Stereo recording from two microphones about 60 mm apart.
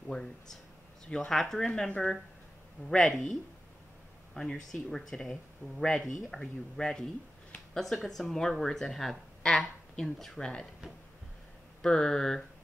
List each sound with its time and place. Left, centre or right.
0.1 s a sound: centre
1.0 s speech: centre
1.3 s speech: centre
2.9 s speech: centre
11.8 s speech: centre